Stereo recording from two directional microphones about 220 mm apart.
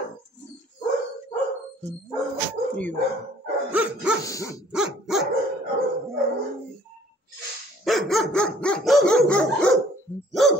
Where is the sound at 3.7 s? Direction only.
5° right (ahead or behind).